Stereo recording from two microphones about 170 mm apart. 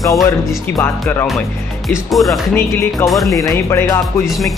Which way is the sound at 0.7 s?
15° left (ahead or behind).